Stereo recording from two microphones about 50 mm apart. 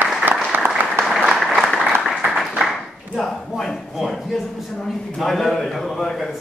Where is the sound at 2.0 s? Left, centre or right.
Centre.